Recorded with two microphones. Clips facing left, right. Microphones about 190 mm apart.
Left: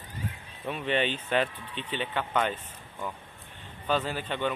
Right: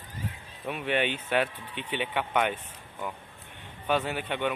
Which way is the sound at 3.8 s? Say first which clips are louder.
Right 1 dB; 10° right (ahead or behind).